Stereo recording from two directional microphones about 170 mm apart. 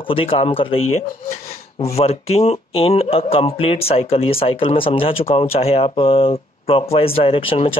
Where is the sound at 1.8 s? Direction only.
35° left (ahead or behind).